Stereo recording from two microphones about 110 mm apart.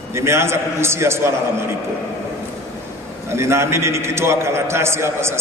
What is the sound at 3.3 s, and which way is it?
A man's voice, 25° right (ahead or behind).